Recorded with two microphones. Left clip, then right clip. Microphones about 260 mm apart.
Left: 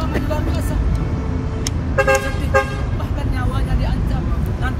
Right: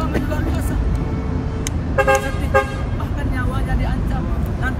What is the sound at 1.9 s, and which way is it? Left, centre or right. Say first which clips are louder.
Speech: even; left.